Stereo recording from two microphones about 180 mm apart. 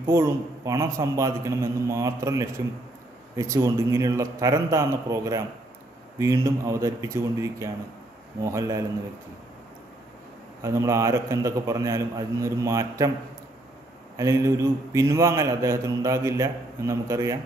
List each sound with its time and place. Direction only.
0.0 s a man's voice: 15° right (ahead or behind)
10.6 s a man's voice: 15° right (ahead or behind)
14.1 s a man's voice: 15° right (ahead or behind)